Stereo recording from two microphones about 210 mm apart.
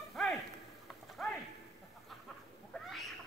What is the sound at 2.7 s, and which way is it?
Cat, centre (ahead or behind).